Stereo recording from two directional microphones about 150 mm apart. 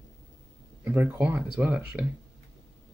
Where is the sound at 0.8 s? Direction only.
20° right (ahead or behind).